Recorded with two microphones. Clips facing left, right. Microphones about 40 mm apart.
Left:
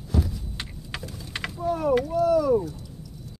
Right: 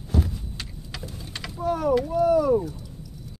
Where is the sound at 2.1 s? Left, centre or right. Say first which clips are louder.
Right 2 dB; centre.